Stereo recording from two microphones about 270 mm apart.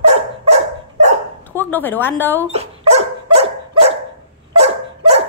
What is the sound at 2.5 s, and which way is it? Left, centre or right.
Dog, right.